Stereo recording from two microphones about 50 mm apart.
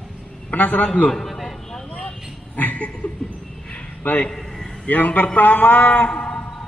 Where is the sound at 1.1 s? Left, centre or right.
Centre.